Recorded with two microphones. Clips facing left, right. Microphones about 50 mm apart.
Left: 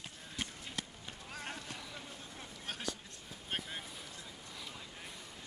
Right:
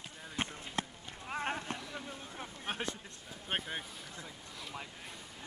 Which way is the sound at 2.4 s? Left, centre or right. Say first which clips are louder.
Right 6 dB; right.